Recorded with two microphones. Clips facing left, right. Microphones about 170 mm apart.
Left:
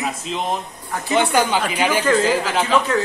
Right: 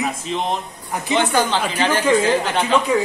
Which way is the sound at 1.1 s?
10° left (ahead or behind).